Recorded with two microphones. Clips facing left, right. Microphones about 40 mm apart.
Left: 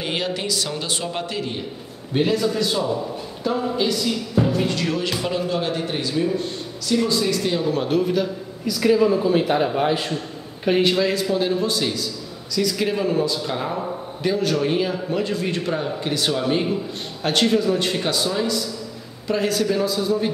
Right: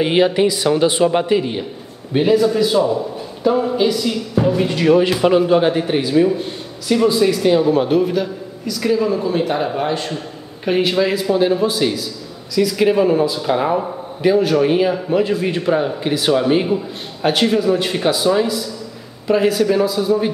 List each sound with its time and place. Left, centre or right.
0.0 s speech: right
2.1 s a man's voice: centre